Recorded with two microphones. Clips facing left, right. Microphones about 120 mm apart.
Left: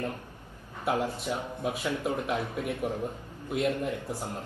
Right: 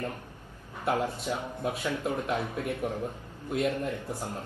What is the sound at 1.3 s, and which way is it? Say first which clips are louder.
A man's voice: even; 10° left (ahead or behind).